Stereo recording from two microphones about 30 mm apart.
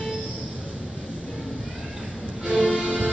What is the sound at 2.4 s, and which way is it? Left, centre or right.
Music, right.